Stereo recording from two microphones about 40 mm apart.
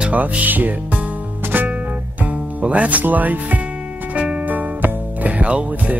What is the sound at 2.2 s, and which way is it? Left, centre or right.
Music, right.